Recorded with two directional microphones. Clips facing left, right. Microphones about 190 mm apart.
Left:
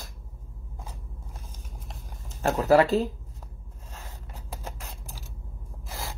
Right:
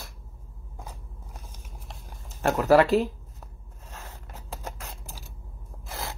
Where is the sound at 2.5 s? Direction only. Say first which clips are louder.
Right 1 dB; 40° left (ahead or behind).